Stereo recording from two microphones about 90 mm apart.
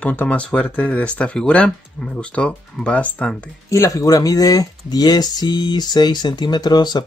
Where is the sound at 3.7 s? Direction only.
40° left (ahead or behind).